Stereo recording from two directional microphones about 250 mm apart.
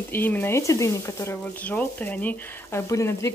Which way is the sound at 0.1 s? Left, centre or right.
Centre.